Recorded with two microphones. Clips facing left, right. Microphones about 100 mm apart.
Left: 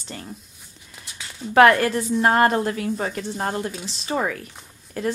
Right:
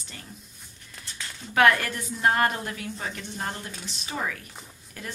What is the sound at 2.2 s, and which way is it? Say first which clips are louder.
A woman's voice: left 5 dB; 40° left (ahead or behind).